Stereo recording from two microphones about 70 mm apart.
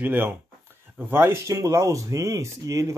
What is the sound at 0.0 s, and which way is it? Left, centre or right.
Speech, right.